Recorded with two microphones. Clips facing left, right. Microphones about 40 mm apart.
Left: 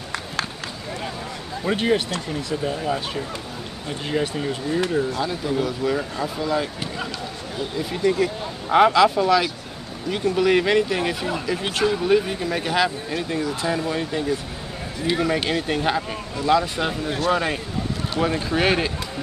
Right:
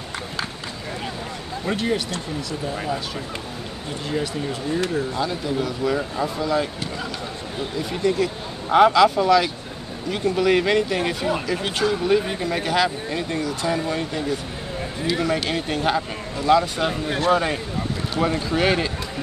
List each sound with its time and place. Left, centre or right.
1.8 s speech: left
4.7 s speech: centre
5.2 s speech: centre
8.0 s speech: centre
13.7 s speech: centre
15.1 s speech: centre